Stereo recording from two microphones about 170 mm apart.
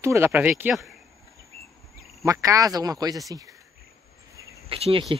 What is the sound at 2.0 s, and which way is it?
Speech, 20° right (ahead or behind).